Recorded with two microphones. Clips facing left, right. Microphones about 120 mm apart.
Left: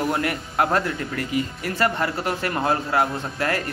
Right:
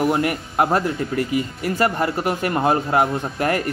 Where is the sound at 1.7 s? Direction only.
15° right (ahead or behind).